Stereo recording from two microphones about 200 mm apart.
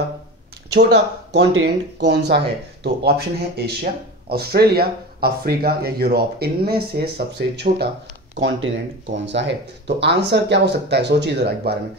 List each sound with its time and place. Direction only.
0.7 s speech: 55° right (ahead or behind)
8.4 s speech: 70° right (ahead or behind)